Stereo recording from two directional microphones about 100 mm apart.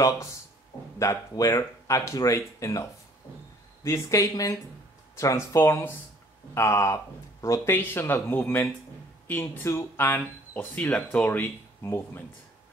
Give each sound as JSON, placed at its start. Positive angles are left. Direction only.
{"t": 0.0, "sound": "speech", "side_deg": 30}